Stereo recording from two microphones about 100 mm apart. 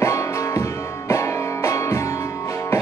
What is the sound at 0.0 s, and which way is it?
Music, 30° left (ahead or behind).